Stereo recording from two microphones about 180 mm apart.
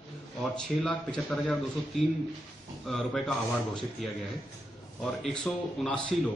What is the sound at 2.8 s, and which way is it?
Speech, centre (ahead or behind).